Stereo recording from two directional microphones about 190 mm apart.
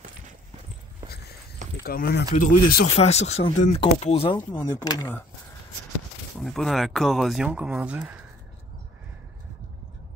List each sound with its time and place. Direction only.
1.8 s speech: 55° left (ahead or behind)
2.3 s speech: 40° left (ahead or behind)
4.4 s speech: 15° left (ahead or behind)
6.4 s speech: centre (ahead or behind)